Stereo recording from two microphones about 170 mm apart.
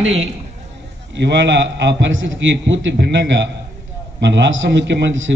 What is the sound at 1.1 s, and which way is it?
A man's voice, 90° right.